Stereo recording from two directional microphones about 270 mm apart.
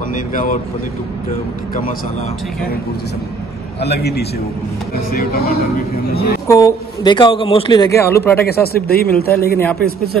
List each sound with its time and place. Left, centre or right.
0.1 s speech: left
3.8 s speech: left
6.4 s a man's voice: centre
8.5 s speech: left